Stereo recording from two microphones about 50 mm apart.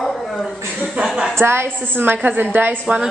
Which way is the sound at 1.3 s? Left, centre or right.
Right.